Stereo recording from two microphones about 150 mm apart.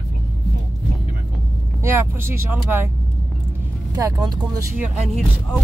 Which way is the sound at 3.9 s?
25° right (ahead or behind).